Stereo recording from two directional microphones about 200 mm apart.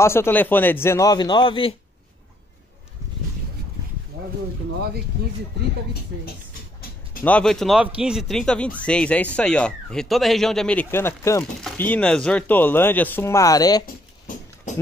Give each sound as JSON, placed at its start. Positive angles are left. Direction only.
{"t": 0.0, "sound": "speech", "side_deg": 10}
{"t": 7.2, "sound": "speech", "side_deg": 5}
{"t": 14.2, "sound": "a sound", "side_deg": 35}